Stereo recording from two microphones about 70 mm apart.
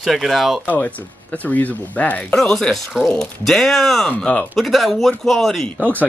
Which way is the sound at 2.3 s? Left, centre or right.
Centre.